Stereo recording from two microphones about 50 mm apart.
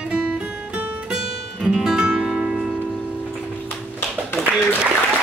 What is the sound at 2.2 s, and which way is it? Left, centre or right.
Music, right.